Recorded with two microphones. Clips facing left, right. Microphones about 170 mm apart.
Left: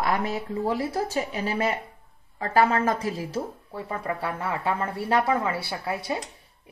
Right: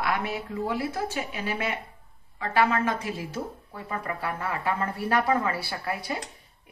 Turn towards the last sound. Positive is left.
turn(degrees=20)  # may be behind; listen again after turning